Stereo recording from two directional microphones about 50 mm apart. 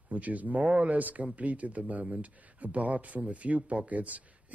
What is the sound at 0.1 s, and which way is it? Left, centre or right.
Speech, right.